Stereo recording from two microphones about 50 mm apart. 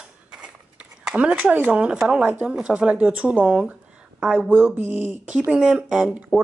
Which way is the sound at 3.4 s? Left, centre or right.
Centre.